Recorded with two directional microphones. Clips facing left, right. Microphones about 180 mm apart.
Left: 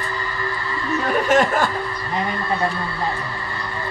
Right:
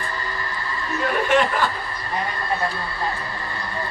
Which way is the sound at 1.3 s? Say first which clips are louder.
Left 3 dB; 45° left (ahead or behind).